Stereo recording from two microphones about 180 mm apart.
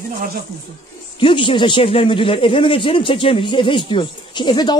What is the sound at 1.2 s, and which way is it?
A man's voice, 30° left (ahead or behind).